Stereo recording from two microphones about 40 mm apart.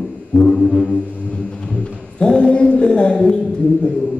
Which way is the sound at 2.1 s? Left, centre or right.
Left.